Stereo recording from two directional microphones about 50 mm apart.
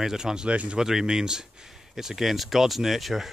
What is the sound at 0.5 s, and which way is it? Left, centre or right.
Speech, right.